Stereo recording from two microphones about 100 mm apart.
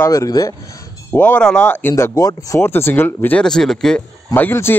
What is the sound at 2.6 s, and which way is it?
Speech, 25° left (ahead or behind).